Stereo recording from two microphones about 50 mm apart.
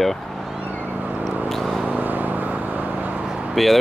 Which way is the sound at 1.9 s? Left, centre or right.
Right.